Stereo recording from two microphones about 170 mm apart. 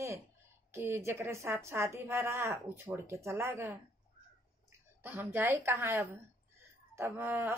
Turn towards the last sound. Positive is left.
turn(degrees=-15)  # may be behind; listen again after turning